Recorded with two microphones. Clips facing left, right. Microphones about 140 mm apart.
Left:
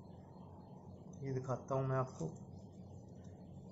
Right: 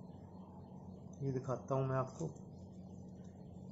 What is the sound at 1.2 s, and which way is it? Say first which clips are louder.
Speech: right 2 dB; 5° right (ahead or behind).